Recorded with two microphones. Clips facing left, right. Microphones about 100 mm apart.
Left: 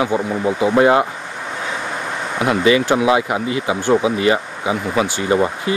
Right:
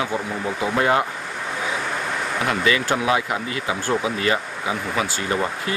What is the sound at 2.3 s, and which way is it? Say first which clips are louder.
Speech: left 7 dB; 20° left (ahead or behind).